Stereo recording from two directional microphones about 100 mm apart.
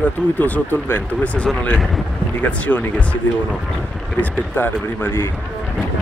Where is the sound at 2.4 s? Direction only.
15° left (ahead or behind).